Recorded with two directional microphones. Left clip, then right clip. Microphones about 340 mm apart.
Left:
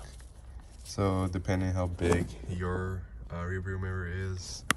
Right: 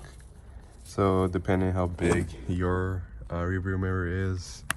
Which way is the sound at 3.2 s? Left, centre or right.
Centre.